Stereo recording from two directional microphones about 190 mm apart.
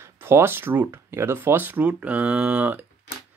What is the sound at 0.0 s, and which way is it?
Speech, 10° right (ahead or behind).